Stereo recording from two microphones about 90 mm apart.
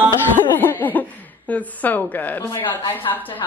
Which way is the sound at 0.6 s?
20° left (ahead or behind).